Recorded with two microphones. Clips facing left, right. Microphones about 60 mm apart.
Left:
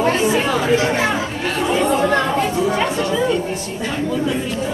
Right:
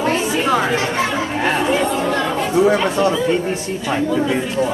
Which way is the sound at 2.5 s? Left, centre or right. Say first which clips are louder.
Right 4 dB; right.